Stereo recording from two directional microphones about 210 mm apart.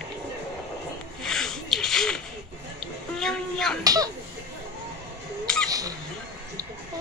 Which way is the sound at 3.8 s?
15° right (ahead or behind).